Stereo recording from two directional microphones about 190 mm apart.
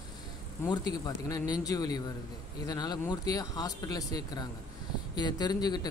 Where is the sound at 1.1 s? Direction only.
20° left (ahead or behind).